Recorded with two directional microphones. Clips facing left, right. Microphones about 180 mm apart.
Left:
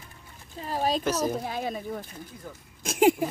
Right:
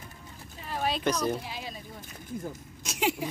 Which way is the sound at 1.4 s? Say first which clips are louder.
Left 8 dB; 50° left (ahead or behind).